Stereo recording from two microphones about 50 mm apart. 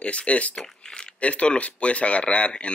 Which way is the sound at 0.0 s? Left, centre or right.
Left.